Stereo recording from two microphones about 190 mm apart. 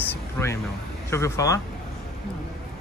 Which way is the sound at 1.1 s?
15° left (ahead or behind).